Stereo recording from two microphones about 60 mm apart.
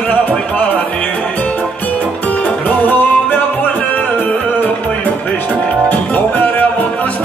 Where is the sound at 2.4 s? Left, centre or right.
Left.